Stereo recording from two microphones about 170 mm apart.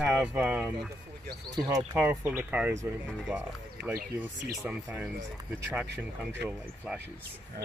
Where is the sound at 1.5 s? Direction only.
20° right (ahead or behind).